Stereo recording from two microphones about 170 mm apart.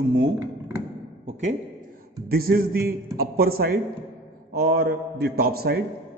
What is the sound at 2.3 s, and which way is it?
A man's voice, 60° right (ahead or behind).